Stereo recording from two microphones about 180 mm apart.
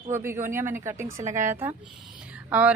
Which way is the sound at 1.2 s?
45° right (ahead or behind).